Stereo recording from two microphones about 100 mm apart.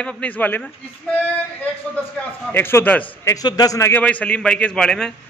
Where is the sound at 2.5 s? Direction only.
20° left (ahead or behind).